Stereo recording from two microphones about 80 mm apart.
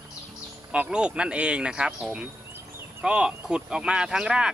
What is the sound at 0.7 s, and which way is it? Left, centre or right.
Speech, centre.